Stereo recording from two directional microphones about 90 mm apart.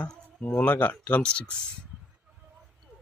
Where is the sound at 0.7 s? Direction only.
20° left (ahead or behind).